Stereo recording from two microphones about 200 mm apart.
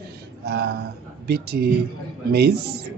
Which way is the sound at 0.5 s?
55° right (ahead or behind).